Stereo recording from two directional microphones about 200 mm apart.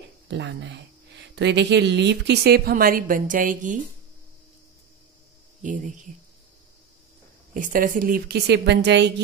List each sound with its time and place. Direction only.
0.3 s speech: 60° right (ahead or behind); by 3.8 s 40° right (ahead or behind)
5.6 s speech: 40° right (ahead or behind)
7.5 s speech: 45° right (ahead or behind); by 9.1 s 60° right (ahead or behind)